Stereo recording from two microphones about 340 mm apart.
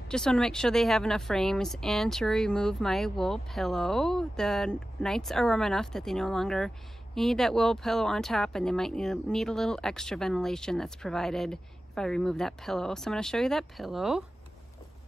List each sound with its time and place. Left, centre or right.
0.1 s speech: centre